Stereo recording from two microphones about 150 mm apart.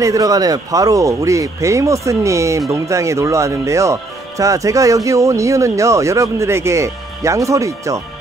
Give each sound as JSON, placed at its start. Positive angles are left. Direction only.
{"t": 0.0, "sound": "speech", "side_deg": -20}